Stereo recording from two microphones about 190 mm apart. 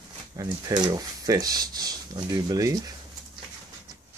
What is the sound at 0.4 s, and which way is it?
Speech, 20° right (ahead or behind).